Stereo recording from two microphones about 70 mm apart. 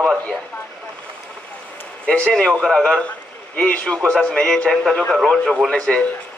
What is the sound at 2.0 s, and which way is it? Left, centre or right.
Speech, centre.